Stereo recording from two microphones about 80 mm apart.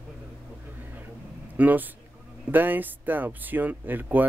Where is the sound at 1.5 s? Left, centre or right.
Right.